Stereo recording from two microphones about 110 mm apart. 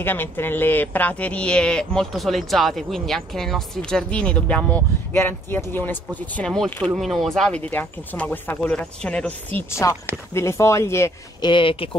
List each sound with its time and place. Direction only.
0.0 s speech: 20° left (ahead or behind)
7.7 s speech: 15° left (ahead or behind)
9.6 s speech: 25° left (ahead or behind)
11.4 s speech: 50° left (ahead or behind)